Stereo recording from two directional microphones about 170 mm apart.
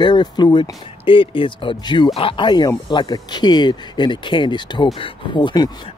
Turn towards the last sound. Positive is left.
turn(degrees=25)  # may be behind; listen again after turning